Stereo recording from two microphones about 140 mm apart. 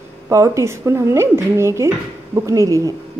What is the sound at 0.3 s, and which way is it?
A woman's voice, 20° right (ahead or behind).